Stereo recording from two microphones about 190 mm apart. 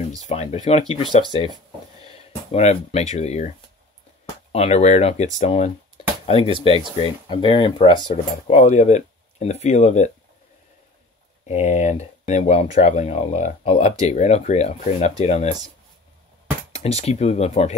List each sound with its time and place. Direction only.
0.3 s speech: 35° left (ahead or behind)
2.0 s speech: 35° left (ahead or behind)
11.4 s speech: 35° left (ahead or behind)
16.7 s speech: 35° left (ahead or behind)